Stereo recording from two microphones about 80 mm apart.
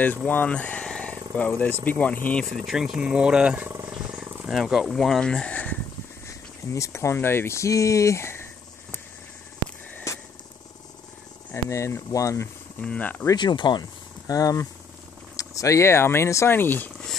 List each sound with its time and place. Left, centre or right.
0.0 s speech: left
2.5 s speech: centre
4.0 s wild animals: centre
4.5 s speech: centre
6.2 s speech: left
10.1 s wild animals: left
11.5 s speech: left
12.8 s speech: centre
13.4 s speech: left
14.2 s speech: left